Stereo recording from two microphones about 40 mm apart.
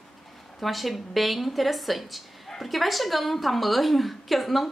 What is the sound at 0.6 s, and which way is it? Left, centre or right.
A woman's voice, centre.